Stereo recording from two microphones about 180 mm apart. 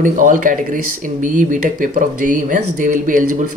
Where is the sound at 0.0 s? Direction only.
50° right (ahead or behind).